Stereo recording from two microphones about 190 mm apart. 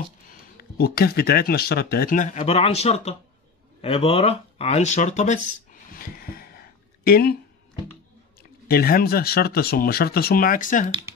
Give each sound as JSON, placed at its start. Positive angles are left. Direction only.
{"t": 0.3, "sound": "speech", "side_deg": 55}
{"t": 8.4, "sound": "speech", "side_deg": 50}